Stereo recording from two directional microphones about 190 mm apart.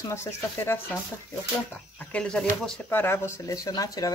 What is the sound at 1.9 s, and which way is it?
Speech, 5° left (ahead or behind).